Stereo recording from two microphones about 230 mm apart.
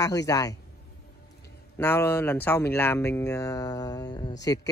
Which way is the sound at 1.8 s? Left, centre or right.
Centre.